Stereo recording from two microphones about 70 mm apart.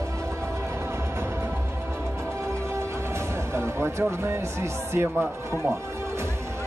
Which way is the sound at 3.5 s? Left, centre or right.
Right.